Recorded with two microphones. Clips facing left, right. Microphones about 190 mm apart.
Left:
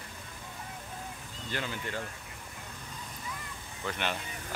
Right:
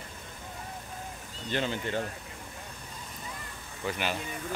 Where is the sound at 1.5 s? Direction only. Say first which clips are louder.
Right 6 dB; 25° right (ahead or behind).